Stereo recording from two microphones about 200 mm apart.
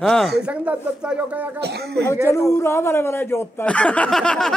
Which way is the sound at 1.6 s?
55° right (ahead or behind).